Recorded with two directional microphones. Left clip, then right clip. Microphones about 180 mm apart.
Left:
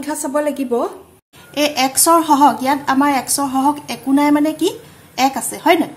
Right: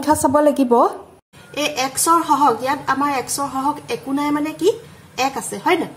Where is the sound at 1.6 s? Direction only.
50° left (ahead or behind).